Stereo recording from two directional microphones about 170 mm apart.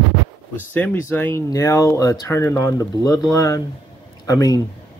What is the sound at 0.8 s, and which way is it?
Speech, 10° left (ahead or behind).